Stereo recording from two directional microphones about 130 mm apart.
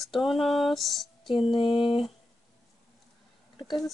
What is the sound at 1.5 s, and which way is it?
Speech, 40° left (ahead or behind).